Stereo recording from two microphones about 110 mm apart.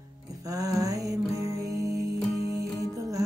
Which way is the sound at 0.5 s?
30° right (ahead or behind).